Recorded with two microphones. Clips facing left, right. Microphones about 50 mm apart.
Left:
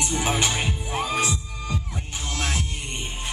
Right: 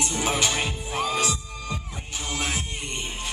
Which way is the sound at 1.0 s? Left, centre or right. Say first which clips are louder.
Even; left.